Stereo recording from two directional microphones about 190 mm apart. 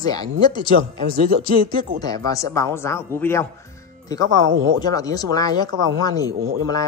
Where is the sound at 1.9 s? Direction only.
20° left (ahead or behind).